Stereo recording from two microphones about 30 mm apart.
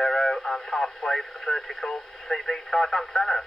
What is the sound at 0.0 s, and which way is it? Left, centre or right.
Speech, centre.